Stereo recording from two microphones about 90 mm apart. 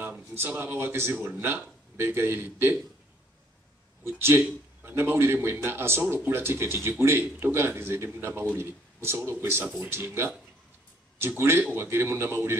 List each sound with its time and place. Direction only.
0.3 s speech: 25° right (ahead or behind)
4.0 s speech: 25° right (ahead or behind)